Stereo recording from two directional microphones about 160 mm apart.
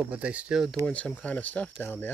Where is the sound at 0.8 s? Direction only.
10° left (ahead or behind).